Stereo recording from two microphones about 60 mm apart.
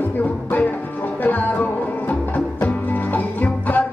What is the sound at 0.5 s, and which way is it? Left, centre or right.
Music, left.